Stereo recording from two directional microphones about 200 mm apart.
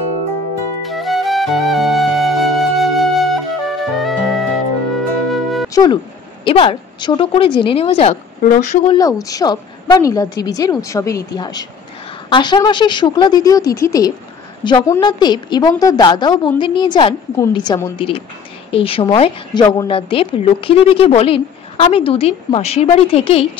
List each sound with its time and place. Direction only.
0.8 s music: centre (ahead or behind)
5.7 s music: 20° left (ahead or behind)
6.4 s a woman's voice: 25° left (ahead or behind)
8.8 s a woman's voice: 20° left (ahead or behind)